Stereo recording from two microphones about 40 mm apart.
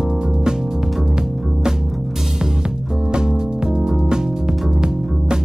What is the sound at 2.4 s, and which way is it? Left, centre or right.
Music, centre.